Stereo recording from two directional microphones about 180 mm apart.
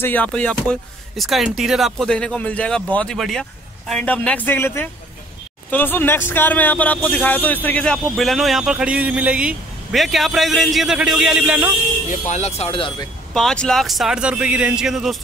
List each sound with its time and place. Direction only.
0.0 s a man's voice: 10° left (ahead or behind)
12.1 s speech: 40° left (ahead or behind)
13.3 s a man's voice: 5° left (ahead or behind)